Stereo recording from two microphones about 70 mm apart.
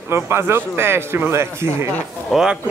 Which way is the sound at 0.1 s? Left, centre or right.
Right.